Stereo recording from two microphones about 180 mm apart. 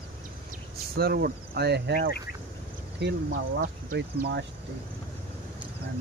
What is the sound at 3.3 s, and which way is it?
Speech, 55° right (ahead or behind).